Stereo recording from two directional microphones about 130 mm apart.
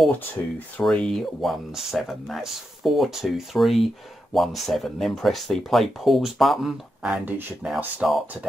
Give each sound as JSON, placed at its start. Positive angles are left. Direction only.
{"t": 0.8, "sound": "speech", "side_deg": 5}
{"t": 7.6, "sound": "speech", "side_deg": 0}